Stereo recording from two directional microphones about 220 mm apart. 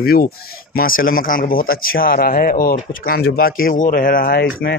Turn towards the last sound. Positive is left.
turn(degrees=65)  # may be behind; listen again after turning